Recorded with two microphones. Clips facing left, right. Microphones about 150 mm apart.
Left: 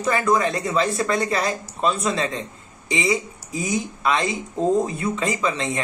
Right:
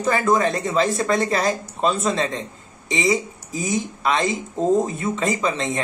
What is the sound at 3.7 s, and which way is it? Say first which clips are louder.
Speech: right 1 dB; 35° right (ahead or behind).